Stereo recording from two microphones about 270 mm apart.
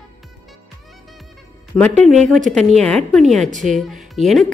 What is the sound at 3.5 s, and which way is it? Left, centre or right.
Speech, right.